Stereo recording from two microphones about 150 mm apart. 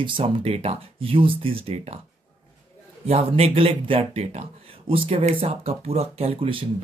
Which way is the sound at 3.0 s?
45° right (ahead or behind).